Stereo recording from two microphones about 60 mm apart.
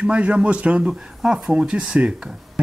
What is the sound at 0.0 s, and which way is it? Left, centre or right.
Speech, right.